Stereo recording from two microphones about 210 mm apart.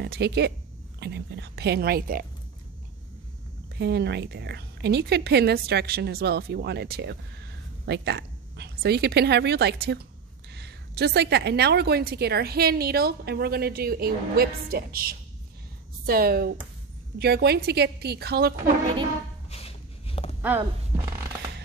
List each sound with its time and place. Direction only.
0.0 s a woman's voice: 50° right (ahead or behind)
3.7 s a woman's voice: 55° right (ahead or behind)
19.5 s a sound: 25° left (ahead or behind)